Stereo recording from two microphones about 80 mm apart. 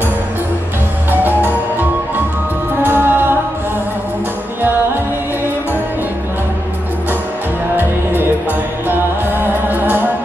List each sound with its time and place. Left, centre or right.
1.1 s music: right
2.8 s music: right
7.7 s music: right